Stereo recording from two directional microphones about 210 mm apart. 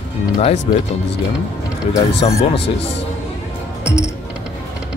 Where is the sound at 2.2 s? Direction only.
25° left (ahead or behind).